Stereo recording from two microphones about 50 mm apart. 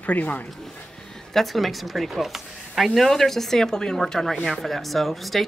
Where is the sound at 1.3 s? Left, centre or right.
Centre.